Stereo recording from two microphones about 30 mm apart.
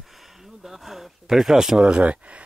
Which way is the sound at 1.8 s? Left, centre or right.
Right.